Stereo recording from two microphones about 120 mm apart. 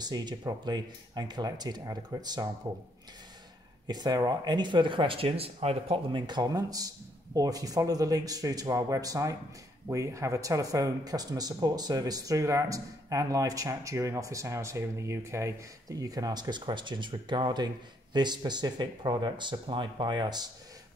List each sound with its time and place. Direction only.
0.0 s speech: 35° right (ahead or behind)
3.8 s speech: 35° right (ahead or behind)